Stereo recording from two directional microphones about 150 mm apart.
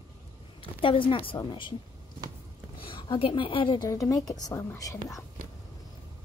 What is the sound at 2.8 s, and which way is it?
A woman's voice, 35° left (ahead or behind).